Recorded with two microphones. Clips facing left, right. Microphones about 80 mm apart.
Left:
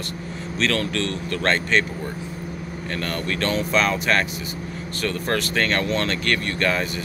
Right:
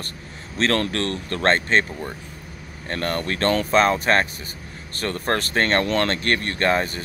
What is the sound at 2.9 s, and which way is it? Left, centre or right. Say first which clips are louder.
Speech: right 2 dB; right.